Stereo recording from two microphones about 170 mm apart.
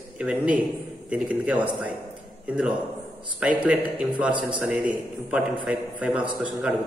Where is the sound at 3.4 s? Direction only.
10° right (ahead or behind).